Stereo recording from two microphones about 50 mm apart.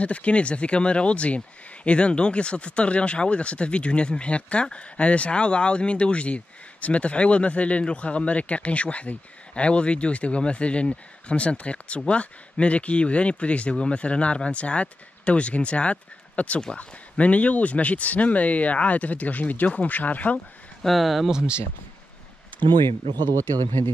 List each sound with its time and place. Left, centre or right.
0.0 s speech: left
20.8 s speech: centre
21.3 s speech: centre